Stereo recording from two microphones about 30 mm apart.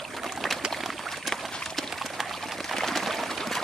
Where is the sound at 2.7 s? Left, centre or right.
Centre.